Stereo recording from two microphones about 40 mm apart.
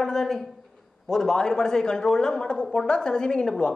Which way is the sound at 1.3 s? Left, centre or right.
Centre.